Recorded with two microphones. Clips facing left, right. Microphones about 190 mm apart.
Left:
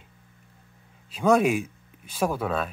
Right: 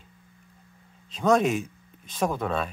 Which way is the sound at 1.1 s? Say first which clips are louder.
Left 1 dB; 10° left (ahead or behind).